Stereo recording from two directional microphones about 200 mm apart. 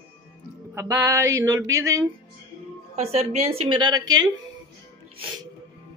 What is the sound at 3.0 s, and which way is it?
A woman's voice, 30° right (ahead or behind).